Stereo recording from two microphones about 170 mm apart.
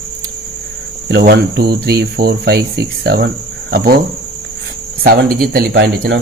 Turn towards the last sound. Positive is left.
turn(degrees=-60)  # may be behind; listen again after turning